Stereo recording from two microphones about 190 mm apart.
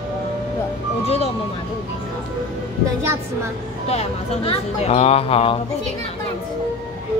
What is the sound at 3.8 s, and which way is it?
Speech, 35° left (ahead or behind).